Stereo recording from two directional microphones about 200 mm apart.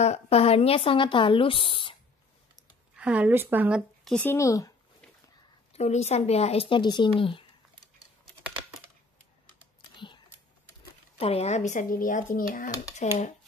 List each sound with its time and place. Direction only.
0.0 s a woman's voice: 30° left (ahead or behind)
3.0 s speech: 5° right (ahead or behind); by 4.7 s 15° left (ahead or behind)
5.7 s speech: 30° left (ahead or behind)
9.9 s a sound: 25° left (ahead or behind)
11.1 s speech: 30° left (ahead or behind)